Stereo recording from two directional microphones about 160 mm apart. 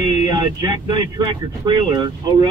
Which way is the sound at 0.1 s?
25° right (ahead or behind).